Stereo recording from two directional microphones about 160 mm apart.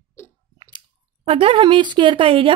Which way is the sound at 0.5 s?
30° right (ahead or behind).